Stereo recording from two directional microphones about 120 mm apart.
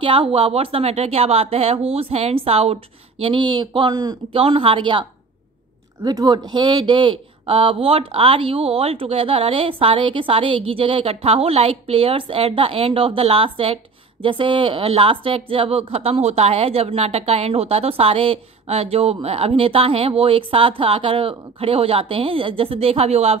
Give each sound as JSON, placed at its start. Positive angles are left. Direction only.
{"t": 0.0, "sound": "speech", "side_deg": -50}
{"t": 4.3, "sound": "speech", "side_deg": -50}
{"t": 6.0, "sound": "speech", "side_deg": -35}